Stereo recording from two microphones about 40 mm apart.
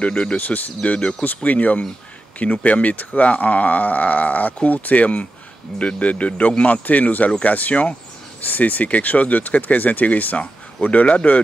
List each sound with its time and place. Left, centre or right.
0.0 s speech: left
1.2 s speech: left